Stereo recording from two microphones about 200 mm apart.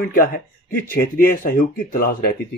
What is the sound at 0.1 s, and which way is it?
Speech, 45° left (ahead or behind).